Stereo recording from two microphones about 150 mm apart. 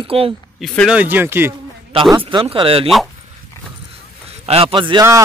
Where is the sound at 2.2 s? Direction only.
35° right (ahead or behind).